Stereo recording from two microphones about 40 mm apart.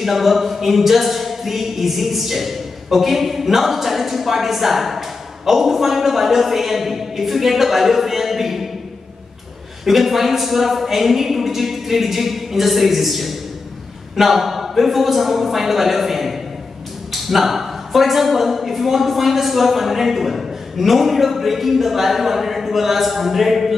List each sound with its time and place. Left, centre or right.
0.0 s a capella: centre
9.8 s a capella: centre